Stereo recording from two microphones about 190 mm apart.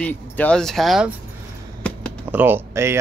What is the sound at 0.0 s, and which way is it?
Speech, 10° left (ahead or behind).